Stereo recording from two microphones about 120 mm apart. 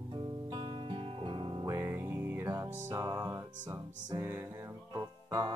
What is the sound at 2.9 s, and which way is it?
Music, 30° right (ahead or behind).